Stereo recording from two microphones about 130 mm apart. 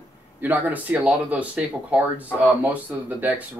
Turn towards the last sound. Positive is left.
turn(degrees=-15)  # may be behind; listen again after turning